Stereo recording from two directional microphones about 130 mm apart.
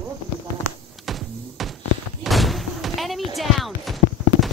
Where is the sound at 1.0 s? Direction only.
Centre (ahead or behind).